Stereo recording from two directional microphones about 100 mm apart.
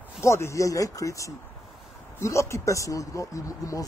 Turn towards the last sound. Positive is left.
turn(degrees=35)  # may be behind; listen again after turning